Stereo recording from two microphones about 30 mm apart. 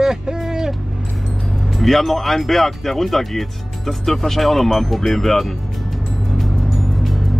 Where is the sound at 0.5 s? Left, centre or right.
Centre.